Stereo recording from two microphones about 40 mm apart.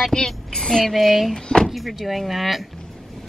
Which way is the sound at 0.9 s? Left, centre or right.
Centre.